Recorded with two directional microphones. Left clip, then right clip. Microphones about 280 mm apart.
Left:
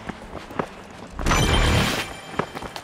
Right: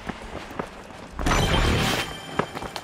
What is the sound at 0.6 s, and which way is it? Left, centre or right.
Run, left.